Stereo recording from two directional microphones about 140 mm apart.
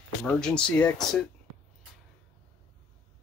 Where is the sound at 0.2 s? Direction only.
5° left (ahead or behind).